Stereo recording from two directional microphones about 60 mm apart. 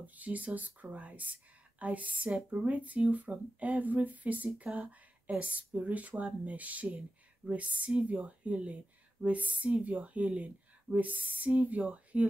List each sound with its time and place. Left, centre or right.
0.0 s speech: right